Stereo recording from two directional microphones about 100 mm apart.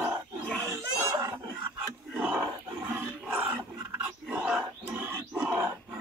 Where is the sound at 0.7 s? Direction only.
30° right (ahead or behind).